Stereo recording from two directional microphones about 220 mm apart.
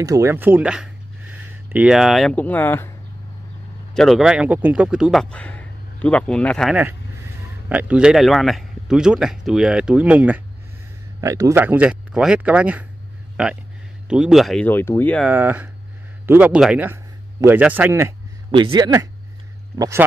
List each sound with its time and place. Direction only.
0.0 s a man's voice: 15° right (ahead or behind); by 2.9 s 10° left (ahead or behind)
3.9 s a man's voice: centre (ahead or behind)
14.0 s a man's voice: 5° right (ahead or behind)
15.2 s speech: 5° right (ahead or behind)
18.5 s speech: 20° right (ahead or behind)